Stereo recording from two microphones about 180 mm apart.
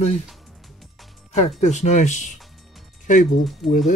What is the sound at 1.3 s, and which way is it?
Speech, 40° left (ahead or behind).